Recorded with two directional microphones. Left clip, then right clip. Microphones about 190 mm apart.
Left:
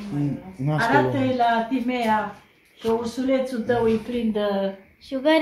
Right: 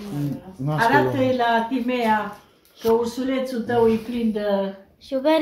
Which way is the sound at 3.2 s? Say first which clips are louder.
Left 2 dB; 5° left (ahead or behind).